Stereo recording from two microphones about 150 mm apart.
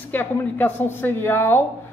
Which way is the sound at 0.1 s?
15° left (ahead or behind).